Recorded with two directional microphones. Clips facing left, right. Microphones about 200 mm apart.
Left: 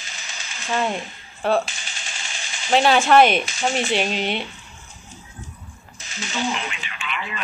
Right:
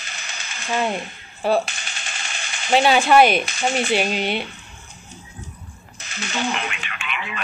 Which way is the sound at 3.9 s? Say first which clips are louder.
Right 1 dB; 5° right (ahead or behind).